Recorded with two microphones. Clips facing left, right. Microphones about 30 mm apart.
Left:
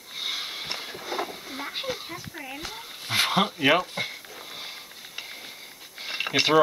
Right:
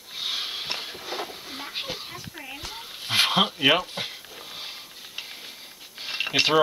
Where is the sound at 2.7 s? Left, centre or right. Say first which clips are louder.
Right 3 dB; centre.